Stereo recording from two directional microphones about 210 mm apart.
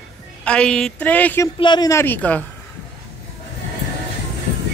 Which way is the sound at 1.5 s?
20° left (ahead or behind).